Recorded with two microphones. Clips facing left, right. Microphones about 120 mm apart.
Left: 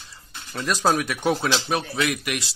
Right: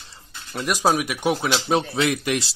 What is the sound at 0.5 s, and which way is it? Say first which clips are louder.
Speech: right 1 dB; 15° right (ahead or behind).